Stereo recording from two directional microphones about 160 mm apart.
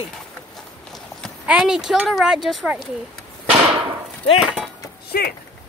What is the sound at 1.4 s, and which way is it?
Speech, 5° right (ahead or behind).